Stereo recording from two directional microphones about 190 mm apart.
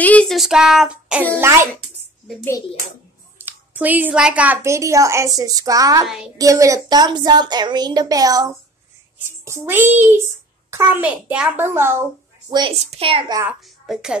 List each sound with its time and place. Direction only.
0.0 s a woman's voice: 5° left (ahead or behind); by 1.7 s 15° right (ahead or behind)
3.3 s a woman's voice: 10° right (ahead or behind); by 13.4 s 30° right (ahead or behind)
13.4 s a child's voice: 5° right (ahead or behind)